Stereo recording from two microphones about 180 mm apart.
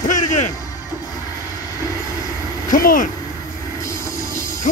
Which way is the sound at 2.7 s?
50° left (ahead or behind).